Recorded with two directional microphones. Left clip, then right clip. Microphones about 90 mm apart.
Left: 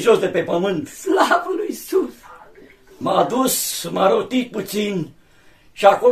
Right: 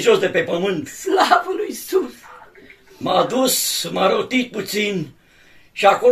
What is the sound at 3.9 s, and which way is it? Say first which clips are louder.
Speech: left 1 dB; 40° left (ahead or behind).